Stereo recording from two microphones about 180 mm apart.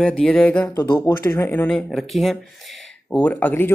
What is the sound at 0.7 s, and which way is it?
Speech, 20° left (ahead or behind).